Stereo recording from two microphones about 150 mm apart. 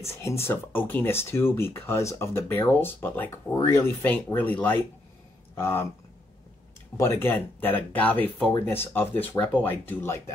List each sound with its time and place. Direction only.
0.1 s speech: 20° left (ahead or behind)
7.0 s speech: 20° left (ahead or behind)